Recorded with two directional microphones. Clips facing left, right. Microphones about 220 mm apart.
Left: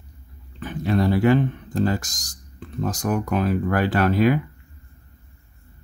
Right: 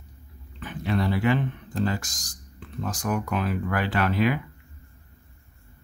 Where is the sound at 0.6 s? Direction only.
40° left (ahead or behind).